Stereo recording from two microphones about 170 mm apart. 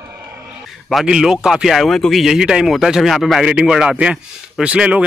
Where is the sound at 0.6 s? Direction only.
Centre (ahead or behind).